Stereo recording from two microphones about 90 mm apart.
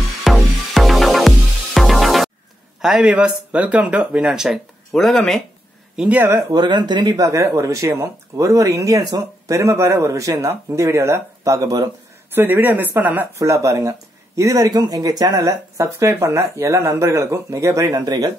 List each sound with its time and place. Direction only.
0.2 s music: centre (ahead or behind)
2.8 s speech: 10° right (ahead or behind)
4.3 s speech: 5° right (ahead or behind)
5.9 s speech: 15° right (ahead or behind)
6.2 s speech: 35° right (ahead or behind)
6.5 s speech: 55° right (ahead or behind)
7.2 s speech: 35° right (ahead or behind)
12.4 s speech: 25° right (ahead or behind)
13.4 s speech: 35° right (ahead or behind)